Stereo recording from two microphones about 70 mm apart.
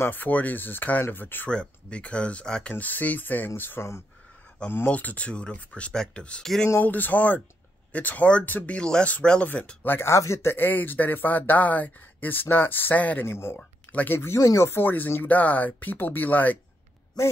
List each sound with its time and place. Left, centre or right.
0.0 s speech: left
1.5 s speech: centre
2.7 s speech: left
6.4 s speech: centre
6.8 s speech: left
9.8 s speech: left
13.2 s speech: left